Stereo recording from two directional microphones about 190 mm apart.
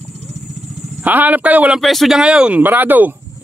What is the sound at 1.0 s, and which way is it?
Speech, 10° right (ahead or behind).